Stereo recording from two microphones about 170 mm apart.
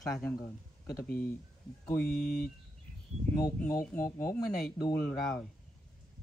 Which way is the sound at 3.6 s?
20° left (ahead or behind).